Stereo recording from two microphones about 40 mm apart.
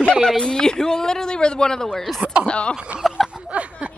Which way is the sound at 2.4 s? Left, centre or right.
Left.